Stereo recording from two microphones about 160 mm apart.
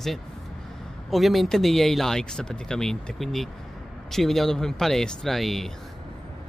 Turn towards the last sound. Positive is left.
turn(degrees=0)  # may be behind; listen again after turning